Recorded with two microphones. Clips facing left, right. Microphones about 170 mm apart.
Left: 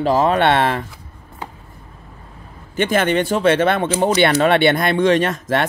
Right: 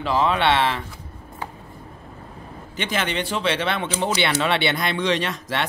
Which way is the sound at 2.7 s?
50° left (ahead or behind).